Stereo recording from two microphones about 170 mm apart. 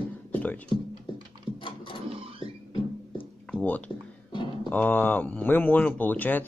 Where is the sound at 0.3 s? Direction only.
10° left (ahead or behind).